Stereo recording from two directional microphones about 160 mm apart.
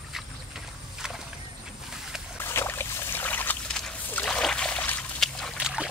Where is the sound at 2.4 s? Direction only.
15° left (ahead or behind).